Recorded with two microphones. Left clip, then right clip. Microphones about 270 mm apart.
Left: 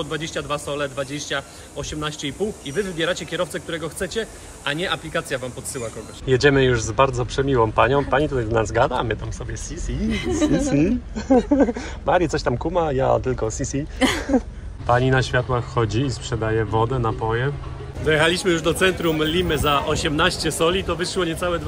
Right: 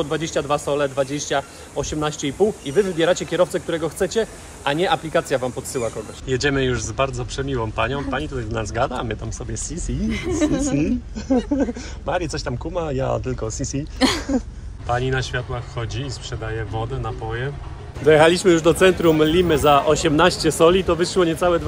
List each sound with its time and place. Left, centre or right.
0.0 s a man's voice: centre; by 10.0 s right
10.0 s a man's voice: centre
10.7 s a woman's voice: centre